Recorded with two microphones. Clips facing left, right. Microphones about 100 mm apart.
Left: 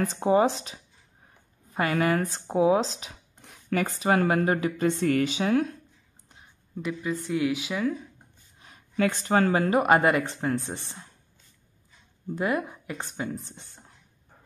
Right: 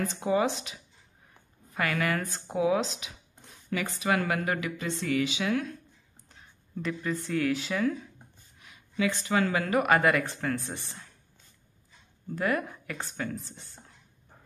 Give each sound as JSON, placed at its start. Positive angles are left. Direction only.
{"t": 0.2, "sound": "speech", "side_deg": 35}
{"t": 4.8, "sound": "speech", "side_deg": 50}
{"t": 6.8, "sound": "speech", "side_deg": 10}
{"t": 8.5, "sound": "a sound", "side_deg": 35}
{"t": 8.9, "sound": "speech", "side_deg": 45}
{"t": 12.4, "sound": "speech", "side_deg": 20}